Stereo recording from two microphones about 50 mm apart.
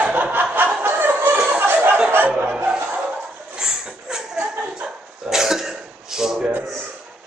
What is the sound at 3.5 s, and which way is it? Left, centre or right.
Dog, centre.